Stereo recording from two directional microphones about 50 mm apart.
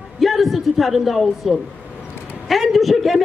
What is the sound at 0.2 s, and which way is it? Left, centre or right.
A man's voice, centre.